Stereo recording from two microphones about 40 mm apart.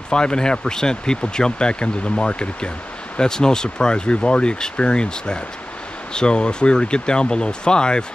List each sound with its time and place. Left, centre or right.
0.1 s speech: left